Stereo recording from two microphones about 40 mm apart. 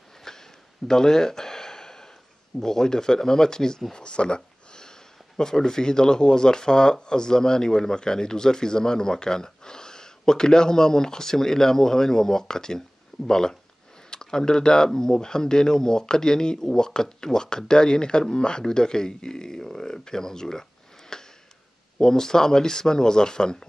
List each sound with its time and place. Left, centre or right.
0.2 s a sound: centre
2.6 s speech: centre
3.9 s a sound: left
5.4 s speech: centre
21.1 s sniff: centre
21.9 s speech: centre